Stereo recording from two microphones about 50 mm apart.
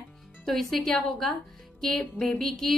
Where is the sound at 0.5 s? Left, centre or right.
Centre.